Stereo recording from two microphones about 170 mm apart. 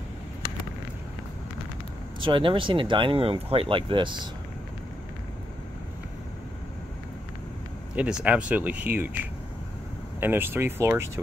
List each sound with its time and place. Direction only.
2.1 s speech: 30° right (ahead or behind)
7.9 s speech: 5° right (ahead or behind)